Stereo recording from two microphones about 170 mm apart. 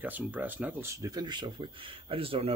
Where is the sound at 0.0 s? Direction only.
10° right (ahead or behind).